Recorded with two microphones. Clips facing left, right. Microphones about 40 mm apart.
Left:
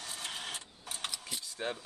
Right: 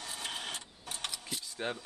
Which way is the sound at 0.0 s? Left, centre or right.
Centre.